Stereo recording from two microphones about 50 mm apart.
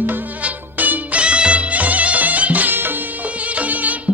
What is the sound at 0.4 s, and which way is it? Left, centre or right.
Music, right.